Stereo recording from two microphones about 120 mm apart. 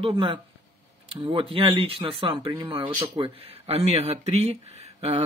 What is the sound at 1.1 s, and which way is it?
Speech, 50° right (ahead or behind).